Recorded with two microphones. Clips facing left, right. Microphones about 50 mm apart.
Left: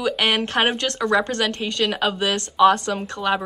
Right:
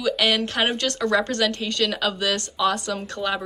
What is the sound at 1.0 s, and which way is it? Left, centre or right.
Speech, centre.